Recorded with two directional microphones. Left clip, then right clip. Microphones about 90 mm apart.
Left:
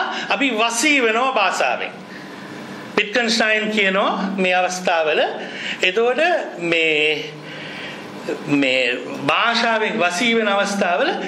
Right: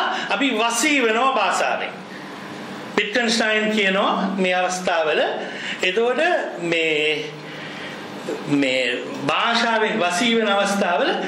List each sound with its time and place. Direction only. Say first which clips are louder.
0.1 s a man's voice: left 1 dB; 20° left (ahead or behind)
2.9 s a man's voice: left 2 dB; 20° left (ahead or behind)
8.5 s a man's voice: left 2 dB; 20° left (ahead or behind)